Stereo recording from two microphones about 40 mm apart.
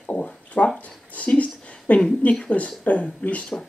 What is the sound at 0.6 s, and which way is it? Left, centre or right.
Speech, left.